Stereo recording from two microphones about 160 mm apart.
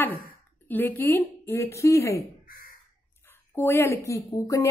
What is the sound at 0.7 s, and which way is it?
Speech, 10° left (ahead or behind).